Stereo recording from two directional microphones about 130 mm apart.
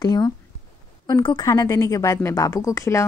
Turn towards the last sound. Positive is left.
turn(degrees=25)  # may be behind; listen again after turning